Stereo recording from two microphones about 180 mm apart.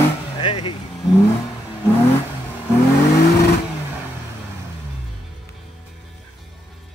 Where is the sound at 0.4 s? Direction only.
30° left (ahead or behind).